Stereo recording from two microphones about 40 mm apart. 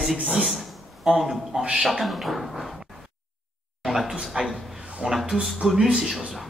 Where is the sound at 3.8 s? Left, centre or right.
Centre.